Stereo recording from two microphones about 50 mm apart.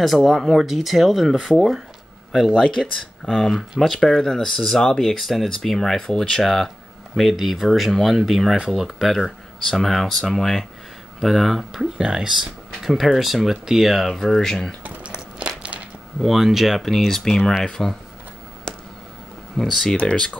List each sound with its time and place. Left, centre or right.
0.0 s speech: centre
2.5 s speech: centre
3.3 s speech: centre
15.0 s a sound: right
16.2 s speech: centre
18.7 s a sound: centre
19.5 s speech: centre
20.0 s speech: centre